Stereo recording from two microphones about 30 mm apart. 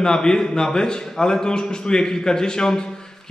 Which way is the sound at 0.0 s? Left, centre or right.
Left.